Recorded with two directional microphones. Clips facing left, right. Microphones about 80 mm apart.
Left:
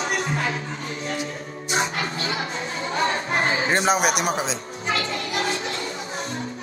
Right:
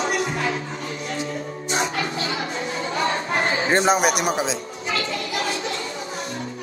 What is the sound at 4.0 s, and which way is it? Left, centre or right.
Music, right.